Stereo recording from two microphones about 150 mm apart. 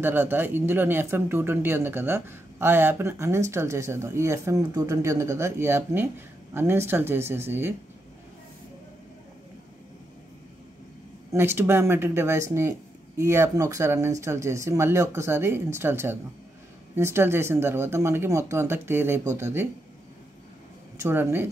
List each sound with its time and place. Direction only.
0.0 s speech: 15° right (ahead or behind)
11.3 s speech: 15° right (ahead or behind)
21.0 s speech: 15° right (ahead or behind)